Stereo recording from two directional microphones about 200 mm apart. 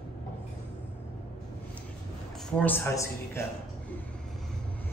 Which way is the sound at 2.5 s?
5° left (ahead or behind).